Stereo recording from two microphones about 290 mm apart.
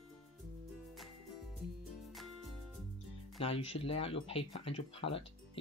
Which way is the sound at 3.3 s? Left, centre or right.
Centre.